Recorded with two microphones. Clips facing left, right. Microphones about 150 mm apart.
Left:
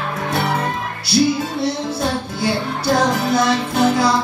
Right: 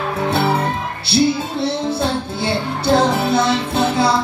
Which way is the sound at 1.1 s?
25° right (ahead or behind).